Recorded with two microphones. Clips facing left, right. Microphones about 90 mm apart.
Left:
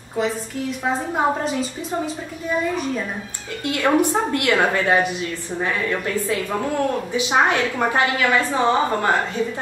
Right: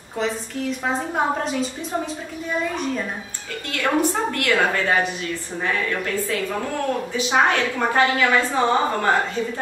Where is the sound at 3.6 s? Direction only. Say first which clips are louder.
Left 3 dB; 15° left (ahead or behind).